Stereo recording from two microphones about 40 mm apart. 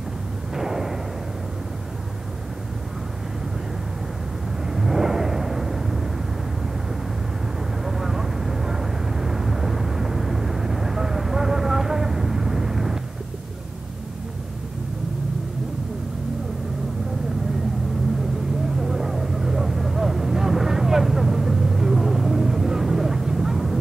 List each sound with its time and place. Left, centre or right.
0.6 s artillery fire: centre
4.6 s vehicle: centre
7.8 s vehicle: centre
18.8 s vehicle: centre